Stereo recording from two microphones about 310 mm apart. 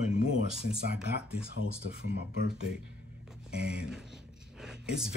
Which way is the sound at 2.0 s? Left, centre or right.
Right.